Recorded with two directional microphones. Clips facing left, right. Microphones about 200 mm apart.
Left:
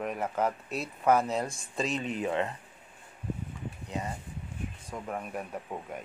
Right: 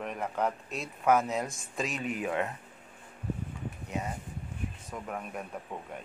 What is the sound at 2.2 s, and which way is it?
Speech, 10° right (ahead or behind).